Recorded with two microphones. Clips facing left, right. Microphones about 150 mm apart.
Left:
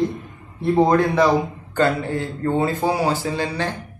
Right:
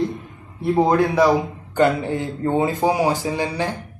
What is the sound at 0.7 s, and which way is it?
Speech, 10° right (ahead or behind).